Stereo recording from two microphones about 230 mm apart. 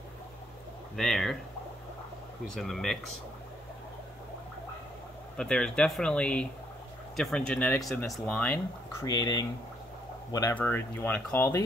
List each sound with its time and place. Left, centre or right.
0.9 s speech: centre
2.5 s speech: centre
5.4 s speech: centre
9.0 s speech: centre